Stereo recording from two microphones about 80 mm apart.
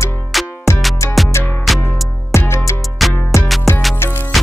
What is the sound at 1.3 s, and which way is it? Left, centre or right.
Music, left.